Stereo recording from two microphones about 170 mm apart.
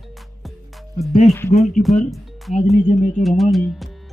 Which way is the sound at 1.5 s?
45° left (ahead or behind).